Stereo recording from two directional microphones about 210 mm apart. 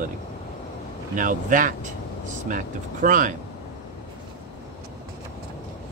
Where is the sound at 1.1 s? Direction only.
40° right (ahead or behind).